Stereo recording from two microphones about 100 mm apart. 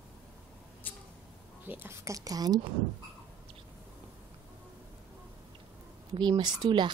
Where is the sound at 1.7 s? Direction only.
20° right (ahead or behind); by 2.6 s 40° right (ahead or behind).